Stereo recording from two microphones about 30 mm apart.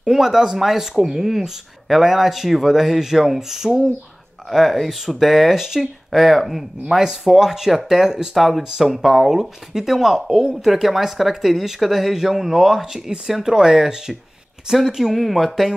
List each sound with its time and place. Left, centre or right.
0.1 s speech: centre
4.5 s speech: centre
5.5 s speech: centre
5.8 s speech: centre
7.2 s speech: centre
8.4 s speech: centre
10.3 s speech: right
10.7 s speech: centre
13.4 s speech: centre
15.1 s speech: centre